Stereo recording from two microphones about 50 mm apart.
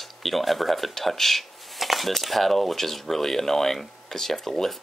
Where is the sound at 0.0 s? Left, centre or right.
Centre.